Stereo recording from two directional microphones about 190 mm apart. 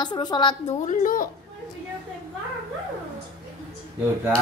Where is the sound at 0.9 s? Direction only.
45° left (ahead or behind).